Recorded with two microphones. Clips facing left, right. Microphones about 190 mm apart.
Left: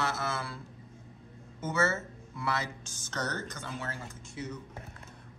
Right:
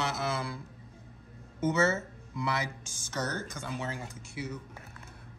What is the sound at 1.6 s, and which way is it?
Speech, 20° right (ahead or behind).